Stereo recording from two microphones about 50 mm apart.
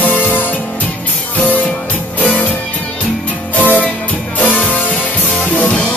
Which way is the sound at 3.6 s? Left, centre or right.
Left.